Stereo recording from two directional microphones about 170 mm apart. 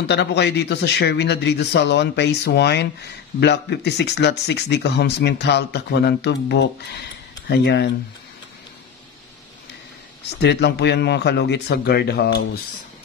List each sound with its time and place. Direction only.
0.0 s speech: 80° left
3.3 s speech: 90° left
7.4 s speech: 80° left
10.4 s speech: 85° left